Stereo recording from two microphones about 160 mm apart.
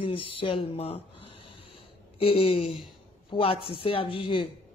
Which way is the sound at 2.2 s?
35° left (ahead or behind).